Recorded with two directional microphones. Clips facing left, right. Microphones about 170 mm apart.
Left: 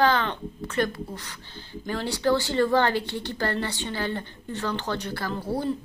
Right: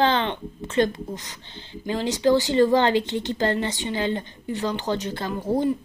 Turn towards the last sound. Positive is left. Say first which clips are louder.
# right 4 dB
turn(degrees=-15)  # may be behind; listen again after turning